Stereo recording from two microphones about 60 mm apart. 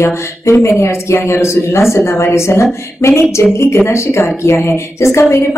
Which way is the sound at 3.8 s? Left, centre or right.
Left.